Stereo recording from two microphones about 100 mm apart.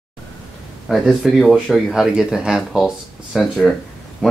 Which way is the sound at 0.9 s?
5° right (ahead or behind).